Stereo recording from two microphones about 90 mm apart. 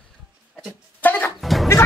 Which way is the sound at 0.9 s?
20° left (ahead or behind).